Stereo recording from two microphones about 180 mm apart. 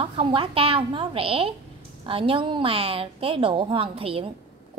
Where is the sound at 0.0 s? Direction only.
30° right (ahead or behind).